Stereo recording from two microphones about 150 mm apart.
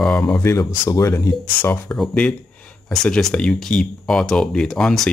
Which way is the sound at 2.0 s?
5° left (ahead or behind).